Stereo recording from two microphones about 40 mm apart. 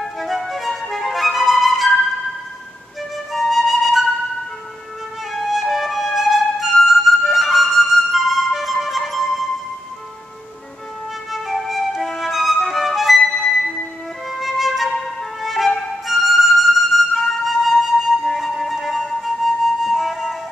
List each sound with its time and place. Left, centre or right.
0.0 s music: centre
3.3 s flute: centre
5.5 s flute: centre
11.3 s music: centre
13.2 s music: centre
14.4 s music: centre
15.4 s flute: centre